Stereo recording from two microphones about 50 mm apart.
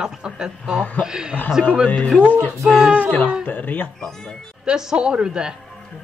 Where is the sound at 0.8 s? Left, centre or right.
Left.